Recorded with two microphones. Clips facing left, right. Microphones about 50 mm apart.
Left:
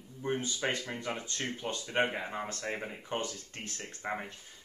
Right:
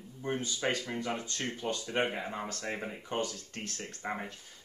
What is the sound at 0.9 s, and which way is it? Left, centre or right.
Speech, left.